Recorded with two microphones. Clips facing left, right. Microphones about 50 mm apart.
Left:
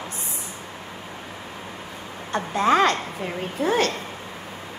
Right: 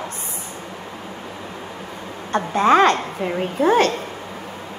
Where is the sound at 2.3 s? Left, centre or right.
Right.